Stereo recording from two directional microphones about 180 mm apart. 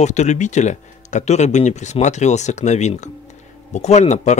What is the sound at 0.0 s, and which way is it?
Speech, 40° left (ahead or behind).